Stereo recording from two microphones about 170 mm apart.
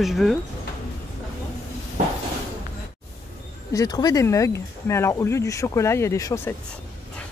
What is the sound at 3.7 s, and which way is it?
Speech, 20° left (ahead or behind).